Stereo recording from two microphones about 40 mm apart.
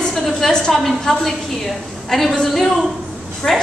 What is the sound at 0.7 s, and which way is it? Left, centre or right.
A woman's voice, centre.